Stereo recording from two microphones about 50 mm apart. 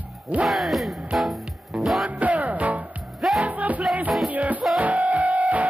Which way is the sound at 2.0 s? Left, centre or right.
Right.